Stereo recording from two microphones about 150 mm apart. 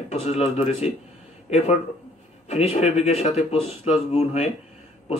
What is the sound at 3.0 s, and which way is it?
A man's voice, 45° left (ahead or behind).